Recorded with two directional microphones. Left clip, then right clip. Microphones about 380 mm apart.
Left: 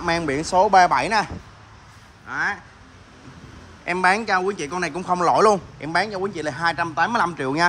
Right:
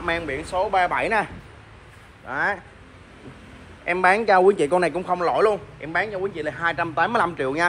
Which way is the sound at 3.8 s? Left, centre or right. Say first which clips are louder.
Right 1 dB; centre.